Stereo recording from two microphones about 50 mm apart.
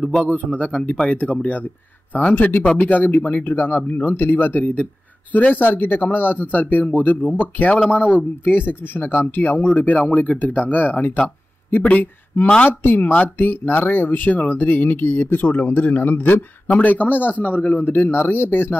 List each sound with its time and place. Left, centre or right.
0.2 s a man's voice: left